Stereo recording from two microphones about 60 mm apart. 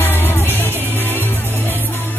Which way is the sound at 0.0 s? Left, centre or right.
Left.